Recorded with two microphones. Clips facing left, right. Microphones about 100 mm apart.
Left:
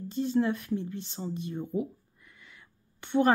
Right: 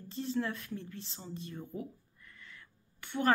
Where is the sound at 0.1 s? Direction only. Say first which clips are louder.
Left 8 dB; 20° left (ahead or behind).